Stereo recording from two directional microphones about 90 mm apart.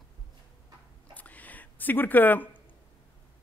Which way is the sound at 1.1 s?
15° left (ahead or behind).